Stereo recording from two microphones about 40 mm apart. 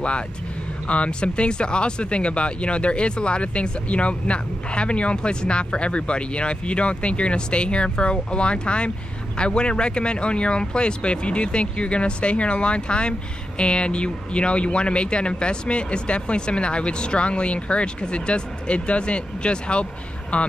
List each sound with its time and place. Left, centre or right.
0.8 s speech: left